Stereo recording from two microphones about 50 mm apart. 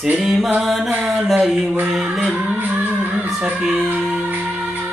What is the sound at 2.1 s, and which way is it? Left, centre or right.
Music, right.